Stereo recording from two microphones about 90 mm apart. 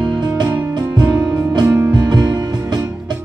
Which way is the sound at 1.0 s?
45° right (ahead or behind).